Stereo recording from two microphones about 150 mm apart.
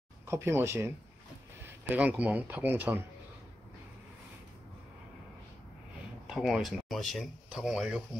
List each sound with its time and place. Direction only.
0.3 s speech: 15° right (ahead or behind)
6.2 s speech: 5° right (ahead or behind)